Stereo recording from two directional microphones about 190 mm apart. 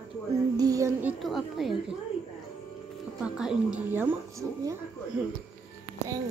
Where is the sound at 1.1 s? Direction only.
Centre (ahead or behind).